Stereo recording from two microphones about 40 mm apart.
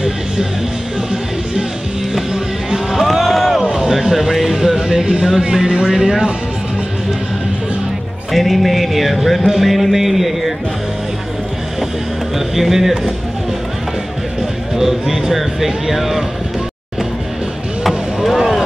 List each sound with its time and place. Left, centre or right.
2.1 s music: centre
3.7 s a sound: centre
4.1 s speech: centre
4.7 s music: centre
5.4 s speech: right
8.3 s music: centre
12.4 s speech: centre
14.8 s speech: centre
17.8 s a sound: centre